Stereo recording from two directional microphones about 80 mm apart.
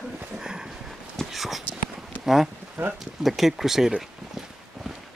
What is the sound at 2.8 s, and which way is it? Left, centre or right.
Speech, right.